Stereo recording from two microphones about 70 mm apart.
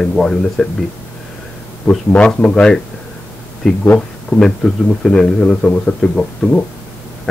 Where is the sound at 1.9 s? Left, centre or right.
Centre.